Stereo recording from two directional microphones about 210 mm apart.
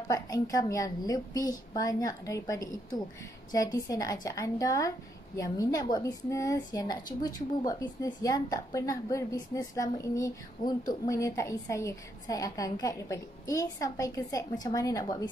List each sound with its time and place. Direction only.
0.1 s a woman's voice: 15° left (ahead or behind)